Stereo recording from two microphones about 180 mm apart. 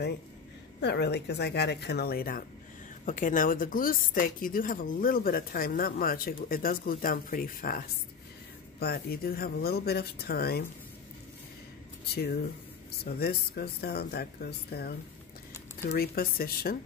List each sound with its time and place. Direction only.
0.7 s a woman's voice: 65° left (ahead or behind)
12.1 s speech: 60° left (ahead or behind)